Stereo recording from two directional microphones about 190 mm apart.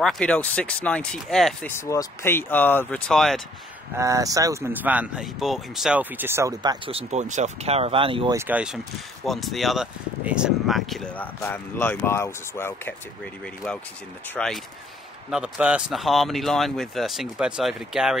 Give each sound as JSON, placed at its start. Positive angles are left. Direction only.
{"t": 0.0, "sound": "speech", "side_deg": 5}
{"t": 1.7, "sound": "speech", "side_deg": 15}
{"t": 3.9, "sound": "speech", "side_deg": -15}
{"t": 8.4, "sound": "speech", "side_deg": -10}
{"t": 14.3, "sound": "speech", "side_deg": 0}